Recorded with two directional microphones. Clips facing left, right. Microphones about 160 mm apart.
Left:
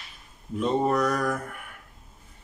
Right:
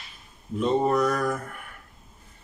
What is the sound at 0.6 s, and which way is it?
Mantra, centre (ahead or behind).